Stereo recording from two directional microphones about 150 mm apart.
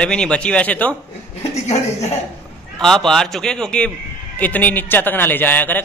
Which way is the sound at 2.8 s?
5° left (ahead or behind).